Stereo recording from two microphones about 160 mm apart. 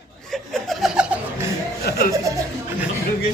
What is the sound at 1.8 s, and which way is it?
Music, 80° left.